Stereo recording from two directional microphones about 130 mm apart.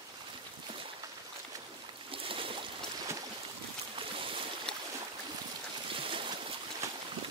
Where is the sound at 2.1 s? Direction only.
45° right (ahead or behind).